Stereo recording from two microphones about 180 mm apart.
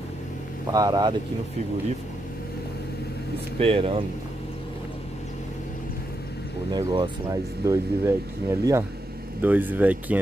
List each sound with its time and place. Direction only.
0.7 s speech: 20° right (ahead or behind)
3.5 s speech: 35° right (ahead or behind)
6.7 s speech: 20° right (ahead or behind)